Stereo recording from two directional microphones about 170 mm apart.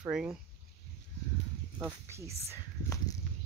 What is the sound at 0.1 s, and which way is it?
Speech, 5° right (ahead or behind).